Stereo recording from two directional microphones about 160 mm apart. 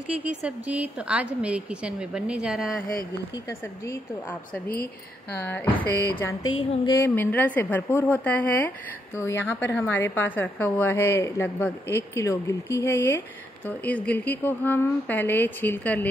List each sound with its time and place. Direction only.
0.1 s a woman's voice: 10° right (ahead or behind)
3.4 s a woman's voice: 15° left (ahead or behind)